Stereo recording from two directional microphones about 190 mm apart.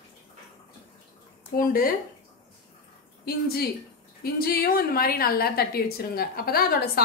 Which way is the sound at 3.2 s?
55° left (ahead or behind).